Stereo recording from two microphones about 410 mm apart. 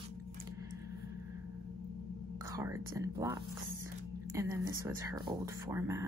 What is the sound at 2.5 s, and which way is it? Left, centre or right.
Speech, centre.